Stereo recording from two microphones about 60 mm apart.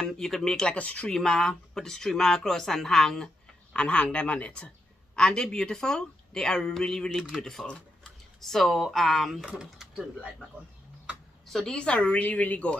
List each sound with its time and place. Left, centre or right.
0.0 s speech: centre
0.7 s speech: left
3.7 s a woman's voice: centre
9.4 s speech: centre
11.4 s a woman's voice: centre; by 12.7 s left